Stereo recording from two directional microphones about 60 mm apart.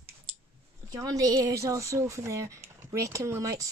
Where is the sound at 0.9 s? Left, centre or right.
Right.